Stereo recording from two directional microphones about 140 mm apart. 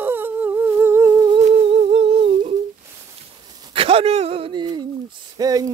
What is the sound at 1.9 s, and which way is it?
Humming, 45° right (ahead or behind).